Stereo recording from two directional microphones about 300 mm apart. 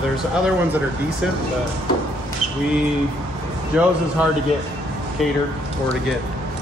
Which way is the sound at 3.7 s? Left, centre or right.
Centre.